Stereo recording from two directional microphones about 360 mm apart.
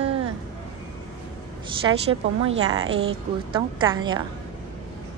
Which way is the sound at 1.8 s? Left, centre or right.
Centre.